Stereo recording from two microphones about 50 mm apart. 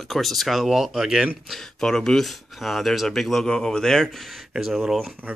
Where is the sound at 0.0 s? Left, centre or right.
Centre.